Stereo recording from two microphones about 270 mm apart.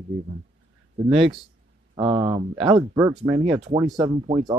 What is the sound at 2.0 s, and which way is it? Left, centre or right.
Speech, centre.